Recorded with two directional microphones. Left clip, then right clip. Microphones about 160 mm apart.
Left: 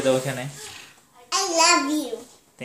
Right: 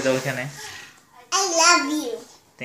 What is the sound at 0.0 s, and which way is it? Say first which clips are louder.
Speech: even; 10° left (ahead or behind).